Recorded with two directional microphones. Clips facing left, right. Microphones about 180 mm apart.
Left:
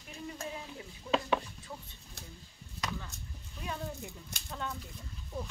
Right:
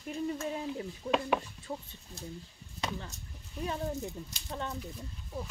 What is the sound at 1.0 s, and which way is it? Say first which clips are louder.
Speech: right 1 dB; 40° right (ahead or behind).